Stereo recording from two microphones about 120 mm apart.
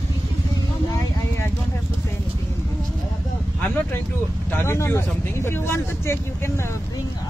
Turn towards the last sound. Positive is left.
turn(degrees=20)  # may be behind; listen again after turning